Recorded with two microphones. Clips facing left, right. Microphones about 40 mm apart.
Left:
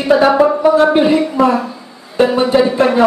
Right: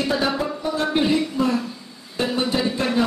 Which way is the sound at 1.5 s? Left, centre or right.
Left.